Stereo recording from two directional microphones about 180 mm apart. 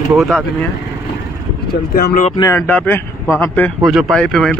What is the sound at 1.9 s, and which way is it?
Speech, 55° left (ahead or behind).